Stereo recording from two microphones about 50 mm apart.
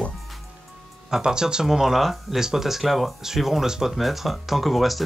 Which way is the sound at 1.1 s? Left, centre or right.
Centre.